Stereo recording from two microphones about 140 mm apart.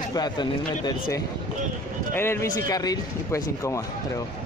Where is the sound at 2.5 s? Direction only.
25° left (ahead or behind).